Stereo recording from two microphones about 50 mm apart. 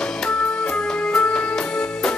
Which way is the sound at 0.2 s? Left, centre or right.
Centre.